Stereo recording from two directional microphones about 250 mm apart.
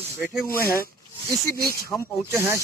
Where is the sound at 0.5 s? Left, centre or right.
Left.